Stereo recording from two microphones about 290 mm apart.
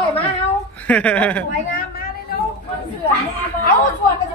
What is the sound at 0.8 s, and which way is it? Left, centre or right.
Speech, centre.